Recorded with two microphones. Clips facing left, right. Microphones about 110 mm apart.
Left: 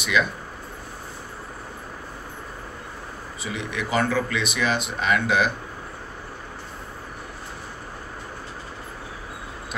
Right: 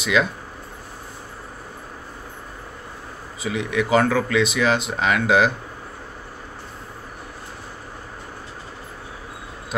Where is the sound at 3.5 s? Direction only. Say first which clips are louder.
Right 7 dB; 90° right.